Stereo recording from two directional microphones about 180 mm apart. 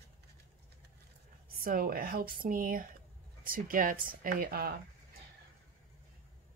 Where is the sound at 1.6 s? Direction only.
55° right (ahead or behind).